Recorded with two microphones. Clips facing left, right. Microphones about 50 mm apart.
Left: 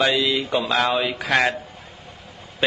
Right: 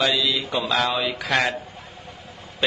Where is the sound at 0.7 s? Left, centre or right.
Centre.